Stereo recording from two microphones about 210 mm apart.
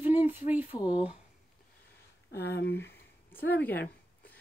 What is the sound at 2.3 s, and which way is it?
Speech, 50° left (ahead or behind).